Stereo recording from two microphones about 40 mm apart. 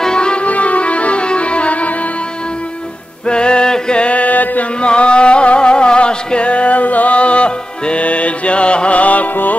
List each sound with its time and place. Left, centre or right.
0.0 s music: left
0.5 s music: left
3.3 s mantra: left
4.8 s music: left